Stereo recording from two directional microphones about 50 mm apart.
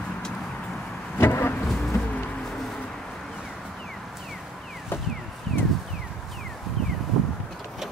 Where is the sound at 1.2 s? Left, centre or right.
Left.